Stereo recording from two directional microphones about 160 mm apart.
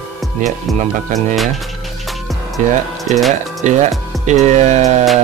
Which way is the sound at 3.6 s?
50° right (ahead or behind).